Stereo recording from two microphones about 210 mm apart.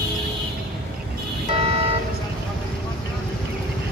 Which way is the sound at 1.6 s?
25° right (ahead or behind).